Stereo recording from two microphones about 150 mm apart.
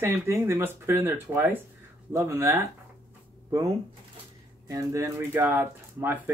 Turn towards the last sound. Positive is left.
turn(degrees=-15)  # may be behind; listen again after turning